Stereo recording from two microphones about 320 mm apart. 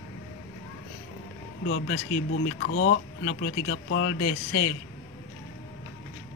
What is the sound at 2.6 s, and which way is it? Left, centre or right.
Speech, left.